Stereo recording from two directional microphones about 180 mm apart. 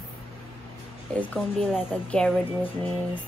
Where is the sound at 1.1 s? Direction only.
10° left (ahead or behind).